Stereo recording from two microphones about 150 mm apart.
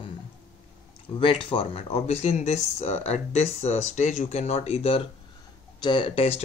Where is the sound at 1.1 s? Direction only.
35° left (ahead or behind).